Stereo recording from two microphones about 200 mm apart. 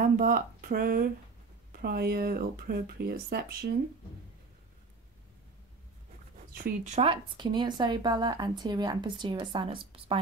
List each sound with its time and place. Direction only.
0.2 s speech: 45° right (ahead or behind)
6.5 s speech: 45° right (ahead or behind)
7.0 s speech: 25° right (ahead or behind)